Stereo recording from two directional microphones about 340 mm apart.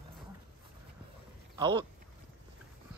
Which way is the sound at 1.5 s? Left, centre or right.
Centre.